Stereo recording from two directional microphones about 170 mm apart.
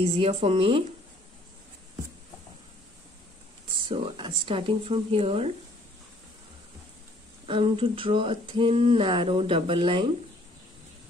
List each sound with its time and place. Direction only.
0.0 s speech: 35° right (ahead or behind)
3.9 s speech: 30° right (ahead or behind)
7.4 s speech: 30° right (ahead or behind)